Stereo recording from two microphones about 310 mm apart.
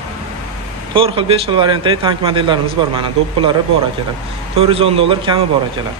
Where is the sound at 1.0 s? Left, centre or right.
Centre.